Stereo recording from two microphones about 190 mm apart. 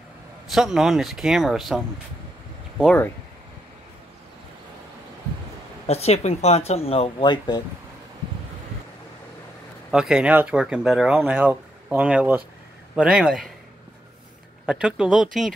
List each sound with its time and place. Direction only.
0.5 s speech: centre (ahead or behind)
2.8 s speech: 5° left (ahead or behind)
5.9 s speech: 35° left (ahead or behind)
9.8 s speech: 5° right (ahead or behind)
14.7 s speech: 5° right (ahead or behind)